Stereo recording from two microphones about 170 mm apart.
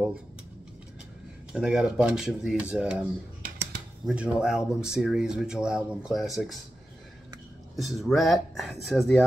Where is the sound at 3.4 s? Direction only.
55° right (ahead or behind).